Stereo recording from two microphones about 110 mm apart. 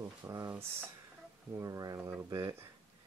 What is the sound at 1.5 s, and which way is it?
Speech, 30° right (ahead or behind).